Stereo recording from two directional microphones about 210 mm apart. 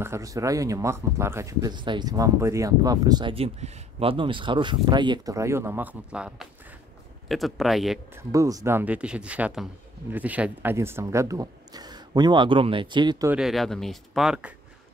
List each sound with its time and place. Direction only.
0.0 s speech: 15° right (ahead or behind)
8.2 s speech: 15° right (ahead or behind)
13.3 s speech: centre (ahead or behind)